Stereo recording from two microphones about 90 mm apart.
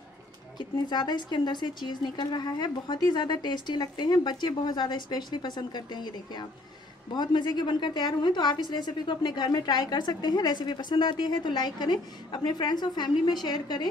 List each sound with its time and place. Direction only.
0.6 s a woman's voice: 55° left (ahead or behind)